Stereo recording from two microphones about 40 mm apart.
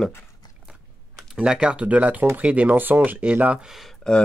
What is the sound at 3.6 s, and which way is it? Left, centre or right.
Speech, centre.